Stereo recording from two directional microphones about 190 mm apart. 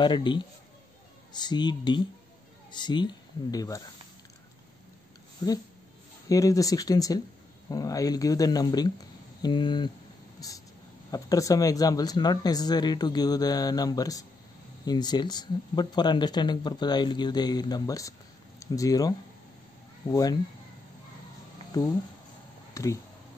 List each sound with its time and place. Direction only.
0.0 s speech: 25° left (ahead or behind)
5.4 s speech: 20° left (ahead or behind)
21.7 s speech: 20° left (ahead or behind)